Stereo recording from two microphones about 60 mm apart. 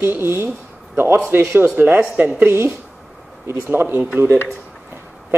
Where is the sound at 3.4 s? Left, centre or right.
Right.